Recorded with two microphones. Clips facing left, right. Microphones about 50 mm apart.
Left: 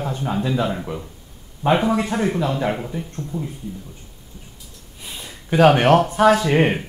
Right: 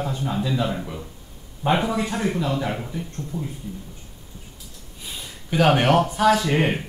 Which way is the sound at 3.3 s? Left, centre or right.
Left.